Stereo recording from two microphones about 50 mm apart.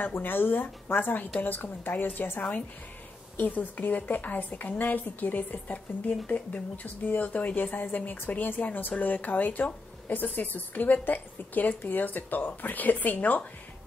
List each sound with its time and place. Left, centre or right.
0.1 s a woman's voice: left